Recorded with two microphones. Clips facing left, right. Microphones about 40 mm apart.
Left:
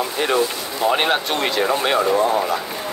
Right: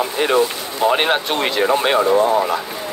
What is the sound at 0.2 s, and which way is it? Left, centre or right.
Speech, right.